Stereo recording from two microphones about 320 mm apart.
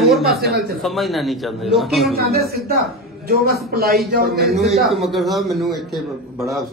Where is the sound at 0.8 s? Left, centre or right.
Centre.